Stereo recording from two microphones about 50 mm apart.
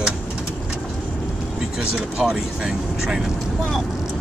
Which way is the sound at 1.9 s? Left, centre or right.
Centre.